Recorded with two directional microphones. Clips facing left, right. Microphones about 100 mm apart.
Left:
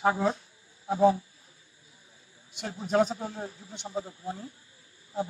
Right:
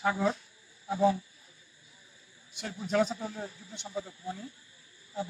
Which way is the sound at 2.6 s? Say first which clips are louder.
Left 3 dB; 35° left (ahead or behind).